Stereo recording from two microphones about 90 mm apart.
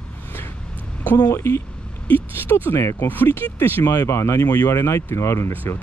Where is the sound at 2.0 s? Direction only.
20° left (ahead or behind).